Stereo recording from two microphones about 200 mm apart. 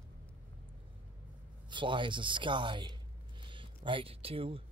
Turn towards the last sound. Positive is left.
turn(degrees=-30)  # may be behind; listen again after turning